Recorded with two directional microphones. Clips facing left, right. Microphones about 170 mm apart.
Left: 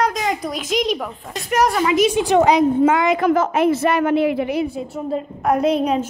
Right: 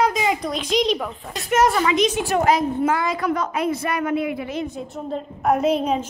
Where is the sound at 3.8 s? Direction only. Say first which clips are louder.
Left 6 dB; 70° left (ahead or behind).